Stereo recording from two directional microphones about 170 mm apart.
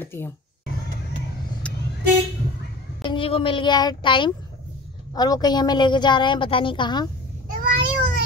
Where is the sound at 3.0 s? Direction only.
30° left (ahead or behind).